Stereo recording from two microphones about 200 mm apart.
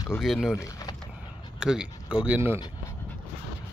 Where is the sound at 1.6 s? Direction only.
5° right (ahead or behind).